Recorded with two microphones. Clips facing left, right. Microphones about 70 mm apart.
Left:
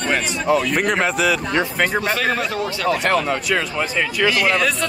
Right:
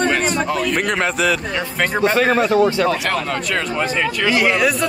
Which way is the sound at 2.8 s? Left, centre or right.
Centre.